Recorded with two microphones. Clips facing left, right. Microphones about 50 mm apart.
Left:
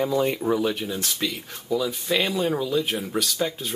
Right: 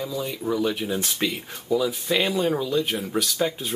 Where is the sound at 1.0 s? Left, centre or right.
Centre.